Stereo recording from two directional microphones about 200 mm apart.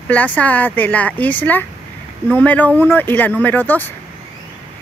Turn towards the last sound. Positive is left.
turn(degrees=10)  # may be behind; listen again after turning